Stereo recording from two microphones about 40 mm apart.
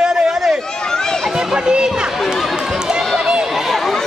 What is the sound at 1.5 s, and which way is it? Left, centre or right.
Speech, right.